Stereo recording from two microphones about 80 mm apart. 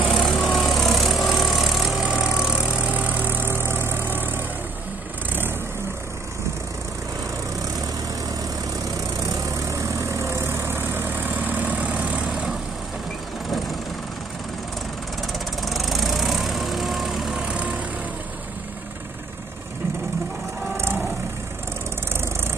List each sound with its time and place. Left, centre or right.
0.1 s vehicle: centre; by 4.5 s right
9.2 s vehicle: right; by 12.3 s centre
15.6 s vehicle: centre
20.7 s wild animals: right